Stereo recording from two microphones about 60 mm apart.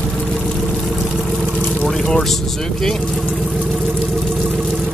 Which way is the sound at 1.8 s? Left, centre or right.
Centre.